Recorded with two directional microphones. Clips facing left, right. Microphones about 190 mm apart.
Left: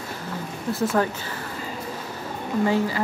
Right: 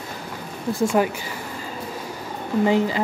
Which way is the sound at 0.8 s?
15° right (ahead or behind).